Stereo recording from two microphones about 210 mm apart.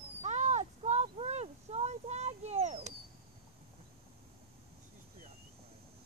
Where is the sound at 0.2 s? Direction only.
35° right (ahead or behind).